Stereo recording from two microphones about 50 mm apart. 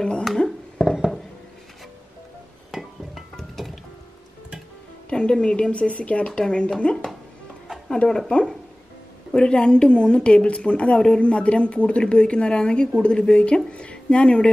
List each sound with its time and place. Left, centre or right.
0.7 s a sound: centre
2.7 s music: centre
5.1 s a woman's voice: centre